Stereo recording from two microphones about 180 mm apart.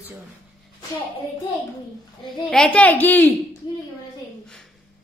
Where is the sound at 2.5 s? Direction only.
5° left (ahead or behind).